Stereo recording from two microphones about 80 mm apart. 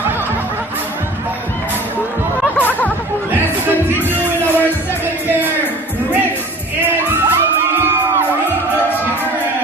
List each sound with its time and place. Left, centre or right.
2.5 s music: centre
4.1 s music: right
7.1 s crowd: right